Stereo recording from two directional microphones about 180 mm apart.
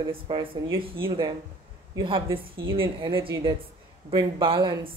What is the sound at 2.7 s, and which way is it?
A woman's voice, 30° right (ahead or behind).